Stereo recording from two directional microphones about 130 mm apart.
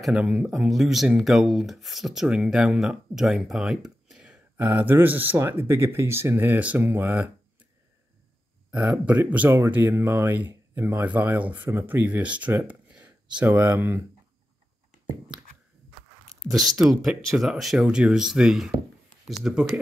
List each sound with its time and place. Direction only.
0.0 s speech: 5° right (ahead or behind)
8.7 s speech: 10° right (ahead or behind)
12.6 s a sound: 10° right (ahead or behind)
13.4 s speech: 15° right (ahead or behind)
15.3 s a sound: 10° right (ahead or behind)
16.4 s speech: centre (ahead or behind)